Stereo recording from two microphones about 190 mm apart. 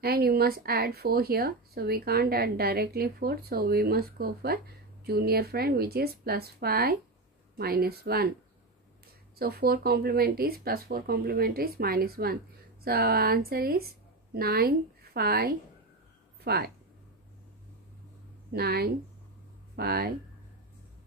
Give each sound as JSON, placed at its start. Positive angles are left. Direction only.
{"t": 0.0, "sound": "speech", "side_deg": -55}
{"t": 9.4, "sound": "a woman's voice", "side_deg": -55}
{"t": 18.5, "sound": "speech", "side_deg": -55}